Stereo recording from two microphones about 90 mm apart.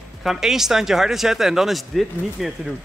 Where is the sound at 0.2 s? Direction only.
5° right (ahead or behind).